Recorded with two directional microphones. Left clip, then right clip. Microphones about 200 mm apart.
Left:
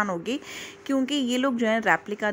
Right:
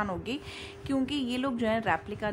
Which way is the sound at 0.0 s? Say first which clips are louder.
Left 6 dB; 15° left (ahead or behind).